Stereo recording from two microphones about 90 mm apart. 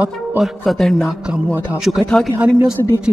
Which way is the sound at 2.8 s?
40° left (ahead or behind).